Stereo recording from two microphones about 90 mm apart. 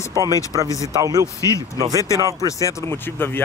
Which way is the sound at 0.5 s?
40° right (ahead or behind).